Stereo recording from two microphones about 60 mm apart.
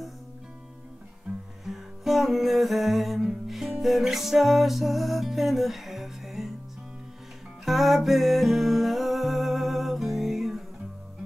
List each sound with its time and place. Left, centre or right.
1.3 s music: centre
1.6 s music: centre
7.6 s music: centre